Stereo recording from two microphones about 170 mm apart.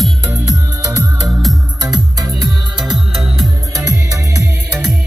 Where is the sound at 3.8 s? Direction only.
20° right (ahead or behind).